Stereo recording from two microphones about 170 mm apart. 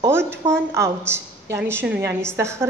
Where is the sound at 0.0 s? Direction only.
15° right (ahead or behind).